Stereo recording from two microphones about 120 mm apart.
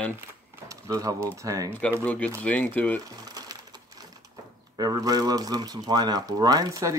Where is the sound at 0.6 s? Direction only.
30° right (ahead or behind).